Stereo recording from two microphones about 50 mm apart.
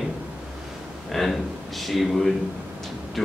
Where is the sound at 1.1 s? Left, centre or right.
Centre.